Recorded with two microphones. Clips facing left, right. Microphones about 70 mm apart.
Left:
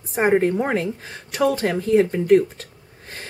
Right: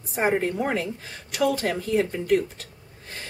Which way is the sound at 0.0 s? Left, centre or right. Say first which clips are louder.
Left 4 dB; left.